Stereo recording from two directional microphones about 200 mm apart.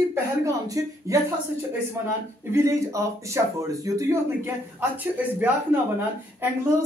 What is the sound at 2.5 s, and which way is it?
Speech, 15° right (ahead or behind).